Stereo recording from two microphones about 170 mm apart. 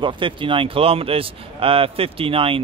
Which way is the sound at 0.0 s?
30° right (ahead or behind).